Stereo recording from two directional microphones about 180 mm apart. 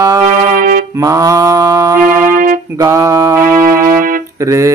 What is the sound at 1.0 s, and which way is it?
Mantra, 20° right (ahead or behind).